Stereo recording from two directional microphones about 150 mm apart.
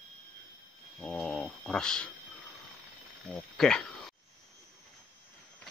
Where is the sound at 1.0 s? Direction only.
5° left (ahead or behind).